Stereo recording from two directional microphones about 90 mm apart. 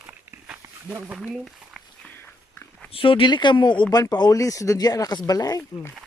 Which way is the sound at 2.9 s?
75° left (ahead or behind).